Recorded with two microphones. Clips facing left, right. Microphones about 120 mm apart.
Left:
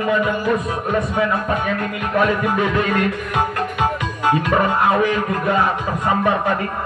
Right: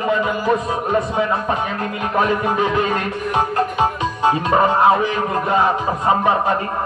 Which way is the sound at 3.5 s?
30° right (ahead or behind).